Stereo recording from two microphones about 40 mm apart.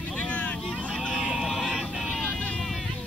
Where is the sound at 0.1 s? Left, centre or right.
Left.